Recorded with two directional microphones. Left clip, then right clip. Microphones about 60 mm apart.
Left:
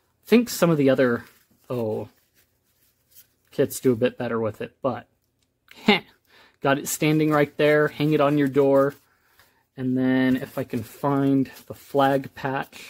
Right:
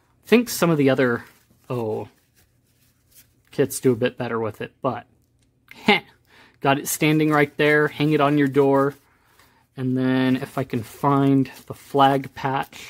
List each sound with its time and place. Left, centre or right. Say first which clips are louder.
0.3 s speech: right 1 dB; centre
3.4 s speech: right 1 dB; centre
5.7 s a sound: right 2 dB; centre
6.8 s speech: right 2 dB; centre
9.8 s speech: right 1 dB; right
10.4 s speech: right 3 dB; right
10.7 s speech: right 5 dB; right